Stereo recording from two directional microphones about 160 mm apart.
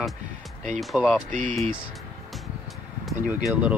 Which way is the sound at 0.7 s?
Centre (ahead or behind).